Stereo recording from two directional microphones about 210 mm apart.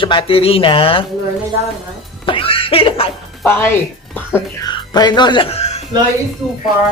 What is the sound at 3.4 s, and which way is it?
A woman's voice, 10° left (ahead or behind).